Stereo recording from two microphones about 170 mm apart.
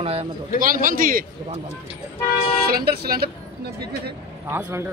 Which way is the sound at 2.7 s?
65° right (ahead or behind).